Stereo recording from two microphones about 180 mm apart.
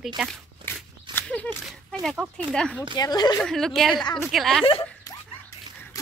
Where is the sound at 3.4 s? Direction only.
5° left (ahead or behind).